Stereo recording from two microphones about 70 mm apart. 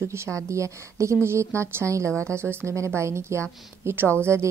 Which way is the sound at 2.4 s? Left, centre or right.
Right.